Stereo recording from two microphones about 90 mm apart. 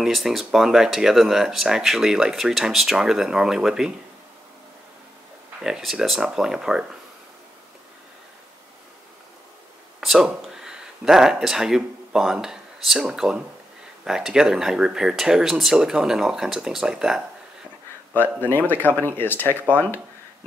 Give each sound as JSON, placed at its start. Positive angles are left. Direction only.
{"t": 0.0, "sound": "speech", "side_deg": -5}
{"t": 5.6, "sound": "speech", "side_deg": -5}
{"t": 9.9, "sound": "speech", "side_deg": -5}
{"t": 18.4, "sound": "speech", "side_deg": 20}